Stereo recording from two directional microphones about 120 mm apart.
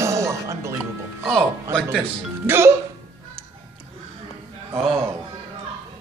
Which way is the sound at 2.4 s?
20° right (ahead or behind).